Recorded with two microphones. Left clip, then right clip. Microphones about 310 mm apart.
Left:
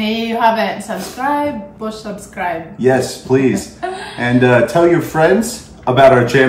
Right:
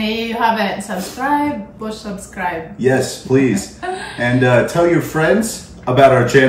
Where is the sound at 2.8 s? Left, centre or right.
Centre.